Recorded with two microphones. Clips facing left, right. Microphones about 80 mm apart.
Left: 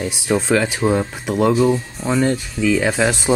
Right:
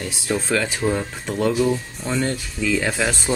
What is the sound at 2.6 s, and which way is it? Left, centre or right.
Speech, centre.